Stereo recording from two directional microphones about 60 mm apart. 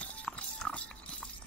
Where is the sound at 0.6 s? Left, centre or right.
Centre.